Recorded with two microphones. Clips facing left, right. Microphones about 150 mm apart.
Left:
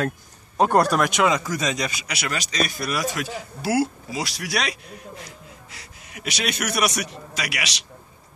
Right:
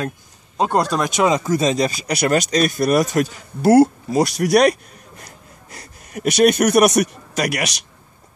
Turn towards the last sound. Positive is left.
turn(degrees=-50)  # may be behind; listen again after turning